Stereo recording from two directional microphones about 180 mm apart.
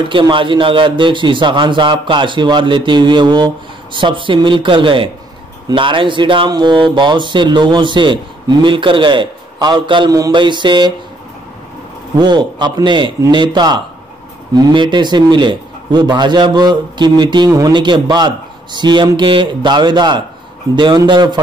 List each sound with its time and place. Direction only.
0.1 s speech: 25° right (ahead or behind)
12.2 s speech: 25° right (ahead or behind)